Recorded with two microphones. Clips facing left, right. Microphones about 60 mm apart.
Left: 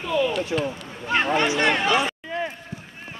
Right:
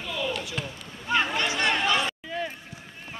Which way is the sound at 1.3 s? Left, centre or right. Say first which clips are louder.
Left 6 dB; left.